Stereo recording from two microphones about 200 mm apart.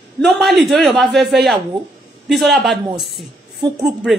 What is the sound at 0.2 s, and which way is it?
A woman's voice, centre (ahead or behind).